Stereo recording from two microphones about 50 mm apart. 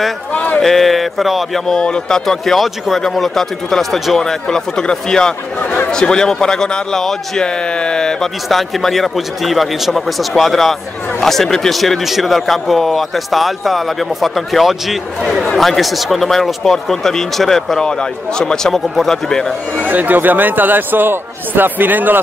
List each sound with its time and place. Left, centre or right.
0.3 s a sound: left
0.6 s speech: centre
1.7 s a man's voice: centre
8.5 s a man's voice: centre
19.8 s a man's voice: right